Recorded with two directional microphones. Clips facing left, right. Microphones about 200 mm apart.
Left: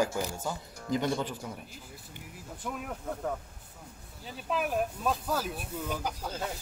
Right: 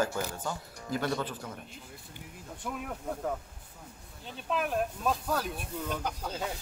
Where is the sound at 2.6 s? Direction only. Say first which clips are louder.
Even; centre (ahead or behind).